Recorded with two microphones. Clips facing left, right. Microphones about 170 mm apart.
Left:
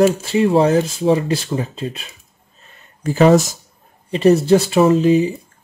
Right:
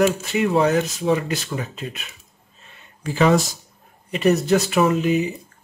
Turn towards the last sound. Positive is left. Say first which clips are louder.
# left 6 dB
turn(degrees=30)  # may be behind; listen again after turning